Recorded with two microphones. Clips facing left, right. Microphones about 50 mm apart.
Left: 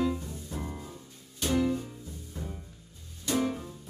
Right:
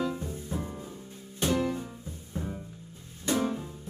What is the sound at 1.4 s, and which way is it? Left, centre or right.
Music, right.